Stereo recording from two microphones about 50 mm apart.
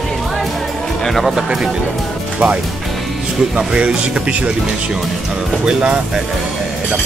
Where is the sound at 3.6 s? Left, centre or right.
Right.